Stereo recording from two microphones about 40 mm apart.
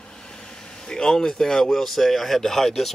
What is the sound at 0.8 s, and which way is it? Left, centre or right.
Speech, centre.